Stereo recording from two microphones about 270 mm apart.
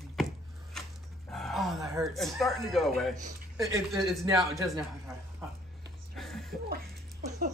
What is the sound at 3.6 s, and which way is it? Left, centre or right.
Speech, centre.